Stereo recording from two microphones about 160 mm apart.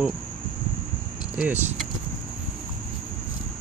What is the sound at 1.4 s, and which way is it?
Speech, 10° right (ahead or behind).